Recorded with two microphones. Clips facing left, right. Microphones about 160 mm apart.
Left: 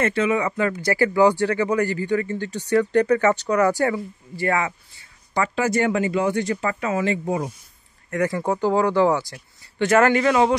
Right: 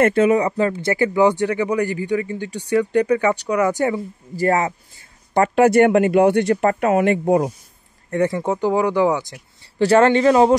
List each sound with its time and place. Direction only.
0.0 s speech: 45° right (ahead or behind); by 4.0 s 20° right (ahead or behind)
4.4 s speech: 40° right (ahead or behind)
5.3 s speech: 60° right (ahead or behind)
8.1 s speech: 25° right (ahead or behind)
9.8 s speech: 30° right (ahead or behind)